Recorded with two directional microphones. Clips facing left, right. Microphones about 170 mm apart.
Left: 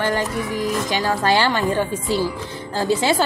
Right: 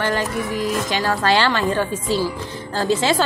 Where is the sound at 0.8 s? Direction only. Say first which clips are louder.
Even; 20° left (ahead or behind).